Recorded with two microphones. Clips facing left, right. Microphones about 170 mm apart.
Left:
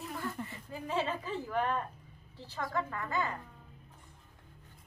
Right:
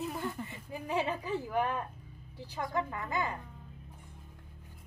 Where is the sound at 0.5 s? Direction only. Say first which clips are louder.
Right 2 dB; 15° right (ahead or behind).